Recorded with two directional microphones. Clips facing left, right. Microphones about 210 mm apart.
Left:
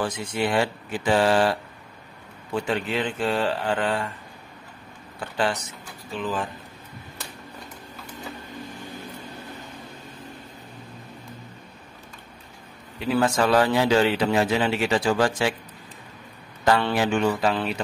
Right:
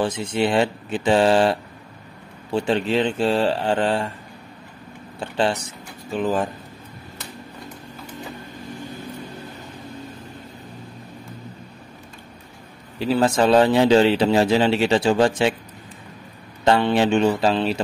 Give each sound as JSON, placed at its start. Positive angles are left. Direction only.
{"t": 0.0, "sound": "speech", "side_deg": -25}
{"t": 5.2, "sound": "speech", "side_deg": -25}
{"t": 6.1, "sound": "speech", "side_deg": -45}
{"t": 13.1, "sound": "speech", "side_deg": -25}
{"t": 16.6, "sound": "speech", "side_deg": -25}